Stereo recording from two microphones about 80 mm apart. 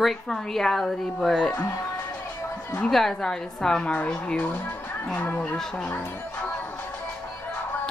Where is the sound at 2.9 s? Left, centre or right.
Centre; by 5.6 s left.